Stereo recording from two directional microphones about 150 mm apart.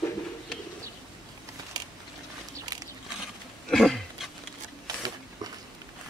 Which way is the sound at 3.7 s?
Centre (ahead or behind).